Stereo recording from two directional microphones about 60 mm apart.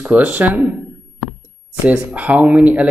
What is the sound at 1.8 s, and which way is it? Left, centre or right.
Speech, right.